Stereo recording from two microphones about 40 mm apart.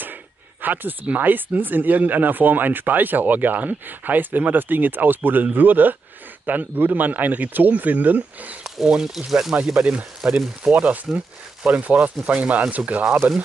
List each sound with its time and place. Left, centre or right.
0.6 s speech: right
8.8 s speech: centre
9.8 s speech: right
10.2 s speech: centre
10.7 s speech: right